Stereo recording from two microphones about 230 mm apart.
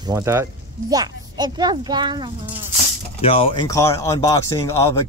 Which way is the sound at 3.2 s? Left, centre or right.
Left.